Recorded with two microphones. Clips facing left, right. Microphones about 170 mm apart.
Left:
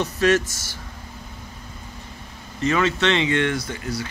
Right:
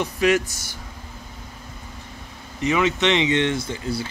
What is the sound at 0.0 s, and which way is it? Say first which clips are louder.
Speech: left 1 dB; 15° right (ahead or behind).